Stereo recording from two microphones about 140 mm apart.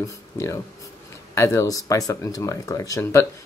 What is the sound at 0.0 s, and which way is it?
Speech, 20° left (ahead or behind).